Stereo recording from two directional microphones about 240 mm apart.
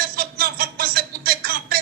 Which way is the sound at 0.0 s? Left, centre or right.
Right.